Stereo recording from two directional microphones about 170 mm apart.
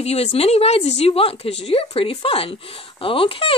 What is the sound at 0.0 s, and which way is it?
A child's voice, 40° left (ahead or behind).